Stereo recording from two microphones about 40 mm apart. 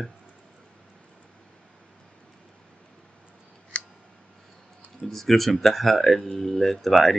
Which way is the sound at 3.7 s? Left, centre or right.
Left.